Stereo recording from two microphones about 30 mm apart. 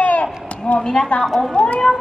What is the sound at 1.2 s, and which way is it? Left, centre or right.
Speech, centre.